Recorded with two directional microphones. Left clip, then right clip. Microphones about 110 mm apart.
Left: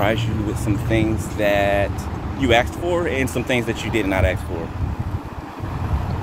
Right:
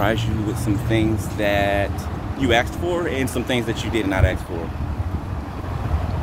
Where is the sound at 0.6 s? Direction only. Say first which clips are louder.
Left 1 dB; 5° right (ahead or behind).